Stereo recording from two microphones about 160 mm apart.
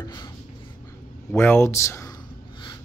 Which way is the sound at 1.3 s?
15° left (ahead or behind).